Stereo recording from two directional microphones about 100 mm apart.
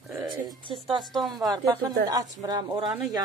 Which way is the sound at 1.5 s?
40° right (ahead or behind).